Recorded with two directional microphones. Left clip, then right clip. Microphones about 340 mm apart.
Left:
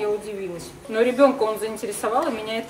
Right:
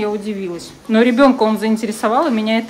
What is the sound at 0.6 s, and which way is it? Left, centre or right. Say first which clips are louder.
A woman's voice: right 6 dB; centre.